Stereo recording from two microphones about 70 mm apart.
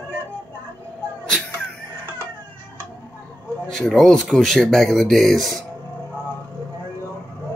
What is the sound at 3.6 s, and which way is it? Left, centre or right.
Speech, centre.